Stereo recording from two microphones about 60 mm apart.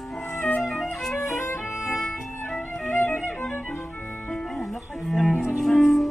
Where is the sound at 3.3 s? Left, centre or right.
Centre.